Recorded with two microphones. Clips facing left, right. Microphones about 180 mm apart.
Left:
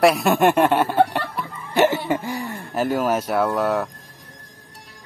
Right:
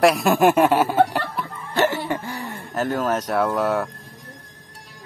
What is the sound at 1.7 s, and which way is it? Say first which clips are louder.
Cough: left 3 dB; 15° left (ahead or behind).